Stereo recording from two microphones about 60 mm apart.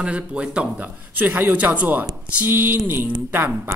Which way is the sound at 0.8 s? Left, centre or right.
Right.